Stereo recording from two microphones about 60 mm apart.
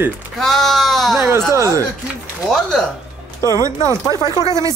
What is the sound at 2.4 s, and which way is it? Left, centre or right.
Speech, centre.